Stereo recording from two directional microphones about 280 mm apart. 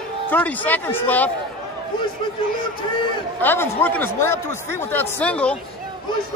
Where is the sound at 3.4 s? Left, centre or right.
Centre.